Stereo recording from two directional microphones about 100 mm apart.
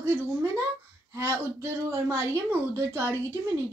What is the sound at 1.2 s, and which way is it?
Speech, 25° right (ahead or behind).